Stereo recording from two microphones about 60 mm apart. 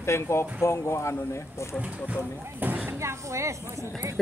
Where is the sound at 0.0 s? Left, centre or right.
Left.